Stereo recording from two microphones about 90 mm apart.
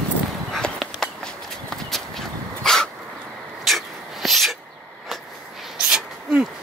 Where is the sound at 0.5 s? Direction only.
5° left (ahead or behind).